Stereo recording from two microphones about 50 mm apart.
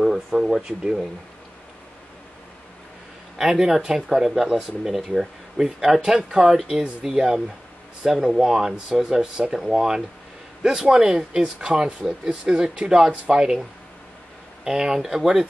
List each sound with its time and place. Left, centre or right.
0.0 s speech: centre
3.3 s speech: centre
12.0 s speech: centre
12.4 s speech: centre